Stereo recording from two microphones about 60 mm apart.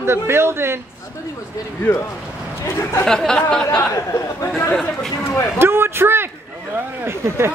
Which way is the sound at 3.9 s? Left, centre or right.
Left.